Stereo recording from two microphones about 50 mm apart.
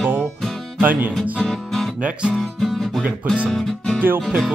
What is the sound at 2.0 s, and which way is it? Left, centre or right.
Speech, right.